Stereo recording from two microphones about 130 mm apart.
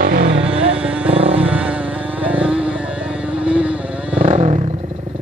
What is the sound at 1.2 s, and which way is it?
Vehicle, 45° right (ahead or behind).